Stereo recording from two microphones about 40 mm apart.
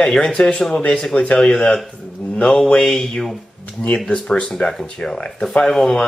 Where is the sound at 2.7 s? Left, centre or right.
Left.